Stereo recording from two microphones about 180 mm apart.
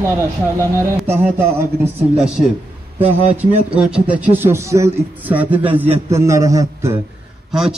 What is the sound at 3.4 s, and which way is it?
A man's voice, 5° right (ahead or behind).